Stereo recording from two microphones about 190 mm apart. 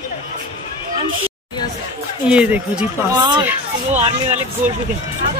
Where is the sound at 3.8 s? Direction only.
35° right (ahead or behind).